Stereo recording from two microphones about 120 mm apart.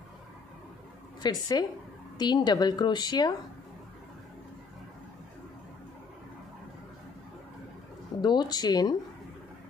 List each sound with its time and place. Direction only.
1.2 s a woman's voice: 35° left (ahead or behind)
8.2 s a woman's voice: 40° left (ahead or behind)